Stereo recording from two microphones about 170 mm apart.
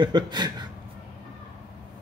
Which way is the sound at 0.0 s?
25° right (ahead or behind).